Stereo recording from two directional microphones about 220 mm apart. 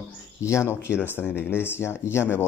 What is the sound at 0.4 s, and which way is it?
Speech, 15° left (ahead or behind).